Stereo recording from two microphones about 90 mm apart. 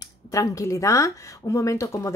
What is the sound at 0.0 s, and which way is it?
Speech, 35° left (ahead or behind).